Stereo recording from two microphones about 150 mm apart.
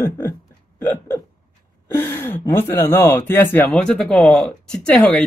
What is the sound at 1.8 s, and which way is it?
Speech, 15° left (ahead or behind).